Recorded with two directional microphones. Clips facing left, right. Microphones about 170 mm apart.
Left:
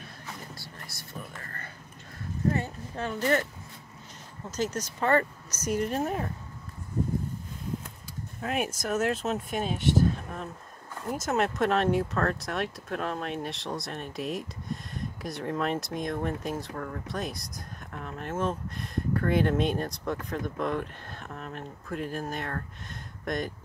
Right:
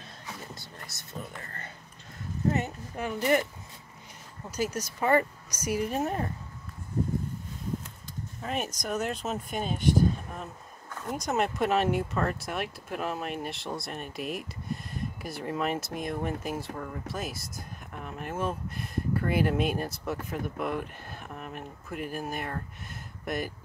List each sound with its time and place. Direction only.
0.6 s a sound: 20° right (ahead or behind)
2.5 s speech: 15° right (ahead or behind)
4.5 s speech: 10° right (ahead or behind)
8.4 s speech: 5° left (ahead or behind)
11.1 s speech: centre (ahead or behind)